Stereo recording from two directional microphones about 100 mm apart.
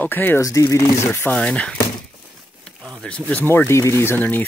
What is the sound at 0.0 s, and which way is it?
Speech, 20° left (ahead or behind).